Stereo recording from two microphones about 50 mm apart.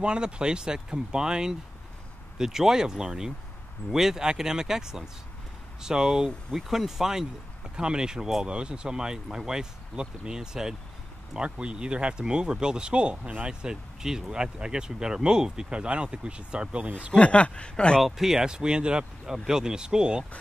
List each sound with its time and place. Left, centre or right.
0.0 s speech: centre
17.1 s speech: left
18.0 s speech: centre